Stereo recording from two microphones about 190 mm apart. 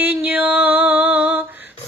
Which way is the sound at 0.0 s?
10° right (ahead or behind).